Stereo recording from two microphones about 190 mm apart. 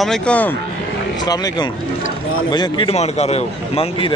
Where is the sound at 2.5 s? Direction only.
25° left (ahead or behind).